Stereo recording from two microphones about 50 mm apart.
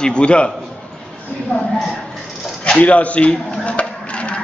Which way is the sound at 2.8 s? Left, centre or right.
Left.